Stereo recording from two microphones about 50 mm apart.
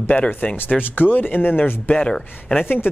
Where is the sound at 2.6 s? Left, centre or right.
Left.